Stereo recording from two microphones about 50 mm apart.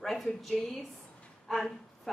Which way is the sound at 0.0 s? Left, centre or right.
Centre.